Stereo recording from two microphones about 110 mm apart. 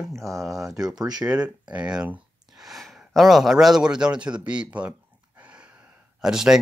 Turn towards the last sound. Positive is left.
turn(degrees=-5)  # may be behind; listen again after turning